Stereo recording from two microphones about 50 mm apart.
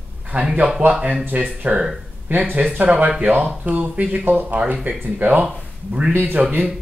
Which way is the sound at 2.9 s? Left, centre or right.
Right.